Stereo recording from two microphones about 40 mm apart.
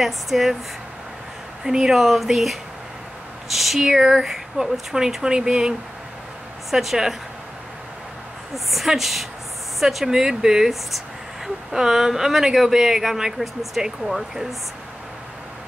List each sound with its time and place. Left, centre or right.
0.0 s a woman's voice: centre
1.6 s a woman's voice: centre
6.7 s speech: centre
8.6 s a woman's voice: centre
11.7 s speech: centre